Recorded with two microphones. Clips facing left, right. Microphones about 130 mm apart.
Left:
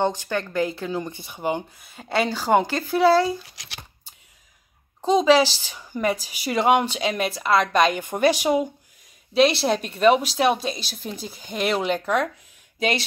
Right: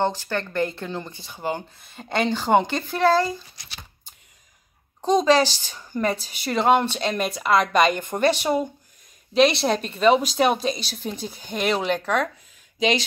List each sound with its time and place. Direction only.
0.0 s speech: 15° left (ahead or behind)
1.9 s speech: 5° left (ahead or behind)
3.4 s speech: 85° left
5.0 s speech: 5° left (ahead or behind)
8.0 s a woman's voice: 10° left (ahead or behind)